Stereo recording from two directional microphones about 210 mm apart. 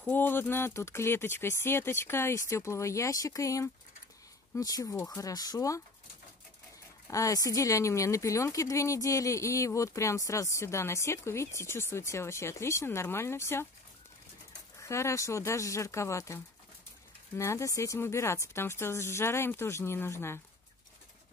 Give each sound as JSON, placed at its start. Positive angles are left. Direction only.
{"t": 0.0, "sound": "speech", "side_deg": 10}
{"t": 7.1, "sound": "speech", "side_deg": 15}
{"t": 14.8, "sound": "speech", "side_deg": 15}
{"t": 17.4, "sound": "speech", "side_deg": 15}